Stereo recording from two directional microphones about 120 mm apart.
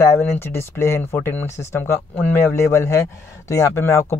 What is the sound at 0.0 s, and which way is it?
Speech, 20° left (ahead or behind).